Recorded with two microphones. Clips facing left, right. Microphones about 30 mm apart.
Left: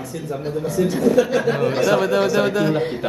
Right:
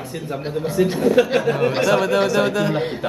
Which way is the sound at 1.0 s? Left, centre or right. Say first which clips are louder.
Even; right.